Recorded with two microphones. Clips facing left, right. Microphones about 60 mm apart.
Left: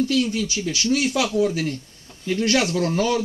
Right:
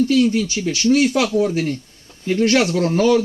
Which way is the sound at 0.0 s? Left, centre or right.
Right.